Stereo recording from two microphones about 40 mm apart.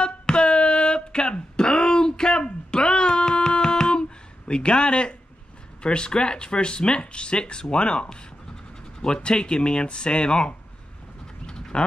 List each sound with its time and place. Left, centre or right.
0.0 s a sound: left
4.5 s speech: left
11.4 s pant: centre